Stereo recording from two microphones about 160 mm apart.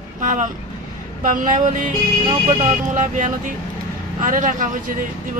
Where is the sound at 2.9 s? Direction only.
50° right (ahead or behind).